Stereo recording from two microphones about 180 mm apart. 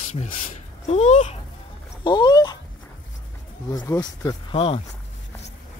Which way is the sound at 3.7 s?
20° left (ahead or behind).